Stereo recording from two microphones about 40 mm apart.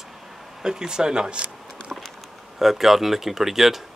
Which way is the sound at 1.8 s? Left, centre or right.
Left.